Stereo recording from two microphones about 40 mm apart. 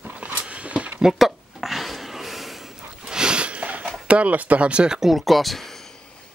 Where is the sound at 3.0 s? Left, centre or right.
Right.